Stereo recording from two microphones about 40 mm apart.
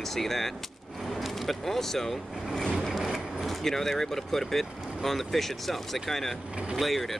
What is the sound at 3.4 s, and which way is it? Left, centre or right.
Speech, centre.